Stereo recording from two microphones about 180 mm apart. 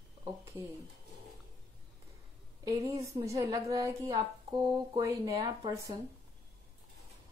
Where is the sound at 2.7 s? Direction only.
15° right (ahead or behind).